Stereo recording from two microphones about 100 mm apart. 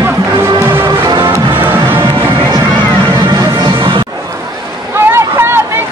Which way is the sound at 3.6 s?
55° right (ahead or behind).